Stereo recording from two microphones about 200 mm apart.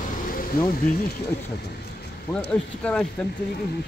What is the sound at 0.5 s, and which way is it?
Speech, 50° left (ahead or behind).